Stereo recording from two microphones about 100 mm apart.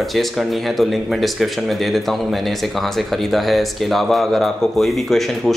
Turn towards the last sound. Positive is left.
turn(degrees=0)  # may be behind; listen again after turning